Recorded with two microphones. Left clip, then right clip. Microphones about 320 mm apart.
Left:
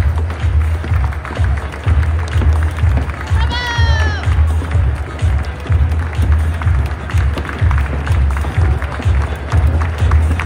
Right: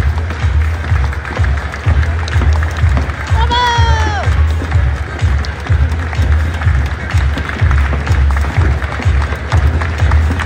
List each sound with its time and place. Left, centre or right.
3.5 s music: centre